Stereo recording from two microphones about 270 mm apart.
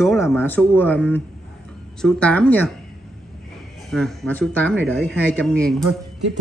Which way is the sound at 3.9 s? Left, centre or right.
Centre.